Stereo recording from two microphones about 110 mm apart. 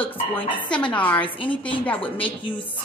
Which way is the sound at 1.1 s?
50° left (ahead or behind).